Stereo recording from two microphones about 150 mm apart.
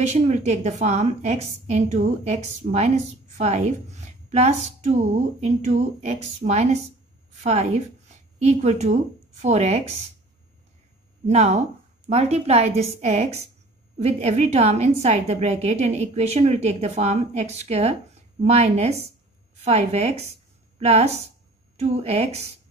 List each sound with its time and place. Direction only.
0.0 s a woman's voice: 50° right (ahead or behind)
11.2 s a woman's voice: 45° right (ahead or behind)